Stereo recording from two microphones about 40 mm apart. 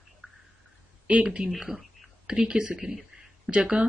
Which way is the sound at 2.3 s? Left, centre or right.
Centre.